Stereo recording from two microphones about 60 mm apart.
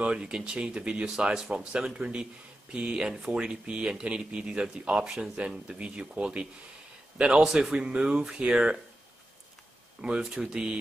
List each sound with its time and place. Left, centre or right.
0.0 s speech: centre
10.0 s speech: centre